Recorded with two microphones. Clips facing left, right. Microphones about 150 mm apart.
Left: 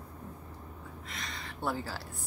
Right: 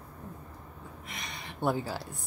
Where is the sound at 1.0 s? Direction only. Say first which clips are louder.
Even; 15° right (ahead or behind).